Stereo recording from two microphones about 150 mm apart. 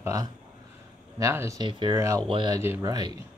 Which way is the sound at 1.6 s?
30° right (ahead or behind).